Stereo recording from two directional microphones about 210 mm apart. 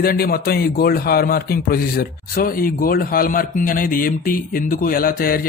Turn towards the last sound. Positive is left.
turn(degrees=45)  # may be behind; listen again after turning